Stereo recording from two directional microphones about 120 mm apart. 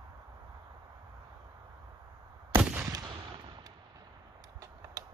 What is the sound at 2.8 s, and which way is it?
Gunshot, 35° right (ahead or behind).